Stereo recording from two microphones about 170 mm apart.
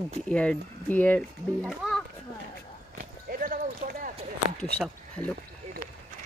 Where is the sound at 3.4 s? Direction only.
55° right (ahead or behind).